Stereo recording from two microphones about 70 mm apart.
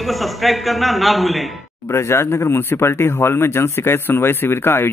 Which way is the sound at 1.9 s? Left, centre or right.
Left.